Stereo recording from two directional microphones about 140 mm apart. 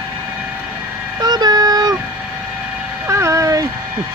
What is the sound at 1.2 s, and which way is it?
Child singing, 30° right (ahead or behind).